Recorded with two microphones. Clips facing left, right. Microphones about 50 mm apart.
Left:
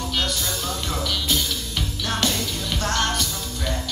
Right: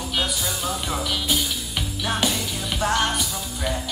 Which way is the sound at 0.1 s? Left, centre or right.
Centre.